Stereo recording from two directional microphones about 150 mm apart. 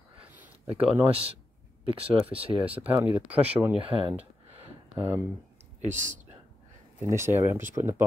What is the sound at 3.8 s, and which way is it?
Speech, 40° right (ahead or behind).